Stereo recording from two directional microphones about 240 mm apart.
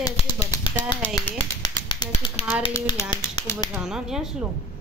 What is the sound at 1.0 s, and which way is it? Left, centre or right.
Tap, centre.